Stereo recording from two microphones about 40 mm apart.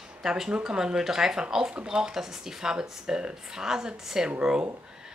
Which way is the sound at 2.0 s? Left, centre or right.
Centre.